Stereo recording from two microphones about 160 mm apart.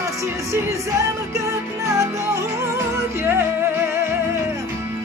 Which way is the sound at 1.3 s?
20° right (ahead or behind).